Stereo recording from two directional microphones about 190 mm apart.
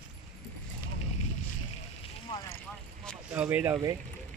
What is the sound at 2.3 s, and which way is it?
Speech, 25° left (ahead or behind).